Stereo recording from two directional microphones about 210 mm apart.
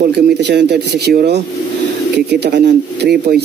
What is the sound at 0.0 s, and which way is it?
Speech, 50° right (ahead or behind).